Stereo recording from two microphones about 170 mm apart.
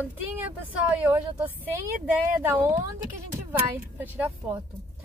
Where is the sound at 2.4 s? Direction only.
15° right (ahead or behind).